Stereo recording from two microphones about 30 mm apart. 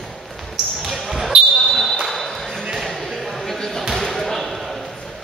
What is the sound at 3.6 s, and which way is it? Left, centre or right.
Basketball bounce, centre.